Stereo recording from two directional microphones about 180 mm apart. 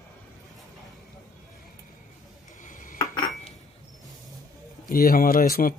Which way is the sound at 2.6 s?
45° left (ahead or behind).